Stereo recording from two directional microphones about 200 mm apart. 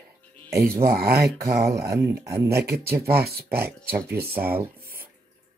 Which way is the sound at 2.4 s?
50° right (ahead or behind).